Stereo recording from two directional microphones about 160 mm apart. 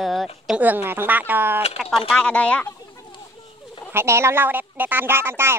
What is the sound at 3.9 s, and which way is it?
Speech, 15° right (ahead or behind).